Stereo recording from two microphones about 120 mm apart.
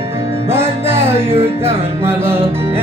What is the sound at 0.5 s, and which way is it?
Music, 20° right (ahead or behind).